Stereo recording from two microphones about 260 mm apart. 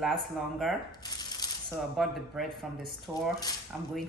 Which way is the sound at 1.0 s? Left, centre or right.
Centre.